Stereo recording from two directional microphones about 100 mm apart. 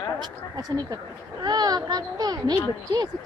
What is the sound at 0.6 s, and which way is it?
A child's voice, 40° right (ahead or behind).